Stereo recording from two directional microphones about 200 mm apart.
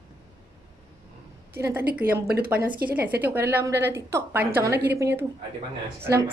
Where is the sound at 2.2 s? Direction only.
50° right (ahead or behind).